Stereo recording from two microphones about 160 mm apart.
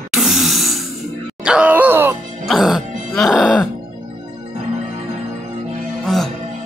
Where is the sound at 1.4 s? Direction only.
5° right (ahead or behind).